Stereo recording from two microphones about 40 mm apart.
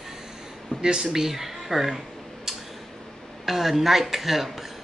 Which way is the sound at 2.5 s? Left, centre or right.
Centre.